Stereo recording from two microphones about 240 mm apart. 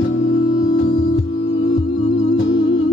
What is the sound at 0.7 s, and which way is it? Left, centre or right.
Music, left.